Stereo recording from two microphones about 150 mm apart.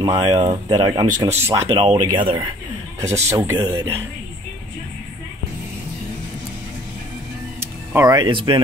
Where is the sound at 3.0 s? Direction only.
20° right (ahead or behind).